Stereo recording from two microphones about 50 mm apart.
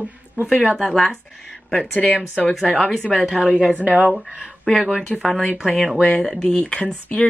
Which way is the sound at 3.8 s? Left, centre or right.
Right.